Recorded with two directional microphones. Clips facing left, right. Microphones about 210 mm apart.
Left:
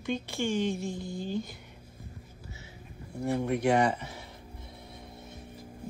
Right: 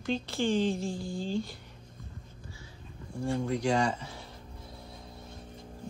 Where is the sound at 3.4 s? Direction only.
25° left (ahead or behind).